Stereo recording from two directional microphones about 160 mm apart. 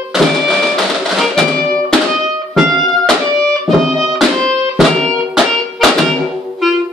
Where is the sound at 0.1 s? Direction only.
5° right (ahead or behind).